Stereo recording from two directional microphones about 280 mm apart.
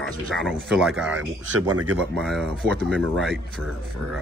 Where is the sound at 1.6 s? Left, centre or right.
Right.